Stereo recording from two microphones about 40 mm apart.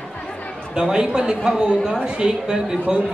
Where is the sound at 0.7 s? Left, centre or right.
Centre.